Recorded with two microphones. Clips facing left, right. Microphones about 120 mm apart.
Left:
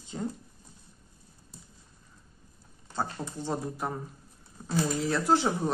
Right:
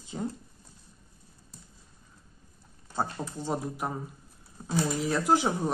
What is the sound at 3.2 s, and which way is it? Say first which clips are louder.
Speech: right 1 dB; 15° right (ahead or behind).